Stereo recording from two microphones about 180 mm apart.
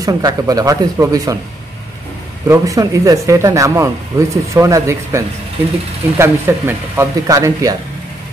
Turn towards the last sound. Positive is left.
turn(degrees=-20)  # may be behind; listen again after turning